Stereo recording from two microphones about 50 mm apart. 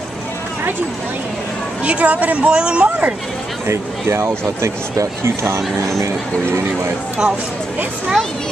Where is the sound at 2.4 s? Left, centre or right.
Centre.